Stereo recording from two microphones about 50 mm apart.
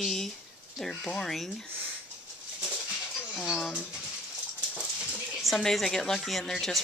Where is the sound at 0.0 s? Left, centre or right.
Centre.